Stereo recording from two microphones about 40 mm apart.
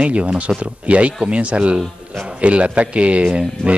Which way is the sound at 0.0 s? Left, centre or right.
Right.